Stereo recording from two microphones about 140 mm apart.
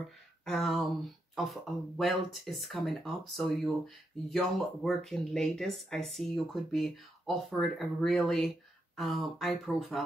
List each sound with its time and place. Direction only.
0.5 s speech: centre (ahead or behind)